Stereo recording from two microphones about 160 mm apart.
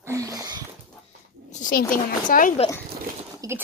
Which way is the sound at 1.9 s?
60° left (ahead or behind).